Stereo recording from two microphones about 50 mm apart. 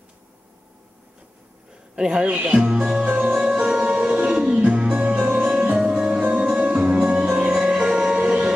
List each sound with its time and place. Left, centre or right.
2.0 s speech: centre
3.1 s music: right